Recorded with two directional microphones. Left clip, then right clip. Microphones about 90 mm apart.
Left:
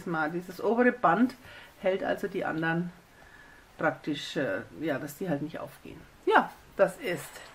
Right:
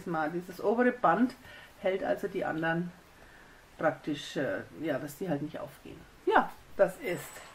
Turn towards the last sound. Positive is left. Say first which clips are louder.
# left 2 dB
turn(degrees=30)  # may be behind; listen again after turning